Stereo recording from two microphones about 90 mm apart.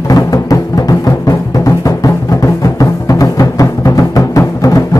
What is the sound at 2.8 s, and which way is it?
Music, 40° left (ahead or behind).